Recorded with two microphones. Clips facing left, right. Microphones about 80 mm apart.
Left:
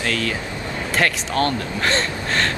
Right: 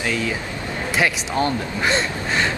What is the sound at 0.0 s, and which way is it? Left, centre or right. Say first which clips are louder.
Speech: even; centre.